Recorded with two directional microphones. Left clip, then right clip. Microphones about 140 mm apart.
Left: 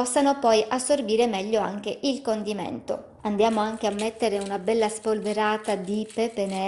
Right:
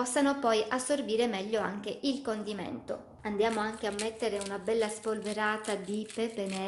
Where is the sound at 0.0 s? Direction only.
30° left (ahead or behind).